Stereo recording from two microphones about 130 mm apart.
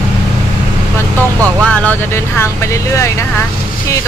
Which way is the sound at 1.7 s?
15° left (ahead or behind).